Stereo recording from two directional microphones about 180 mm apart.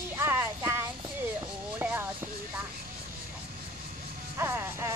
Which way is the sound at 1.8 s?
10° right (ahead or behind).